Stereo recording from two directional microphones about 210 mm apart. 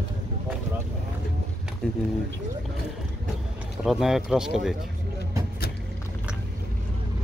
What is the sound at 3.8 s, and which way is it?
Speech, centre (ahead or behind).